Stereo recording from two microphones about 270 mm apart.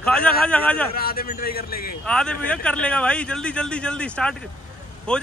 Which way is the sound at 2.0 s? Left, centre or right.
Centre.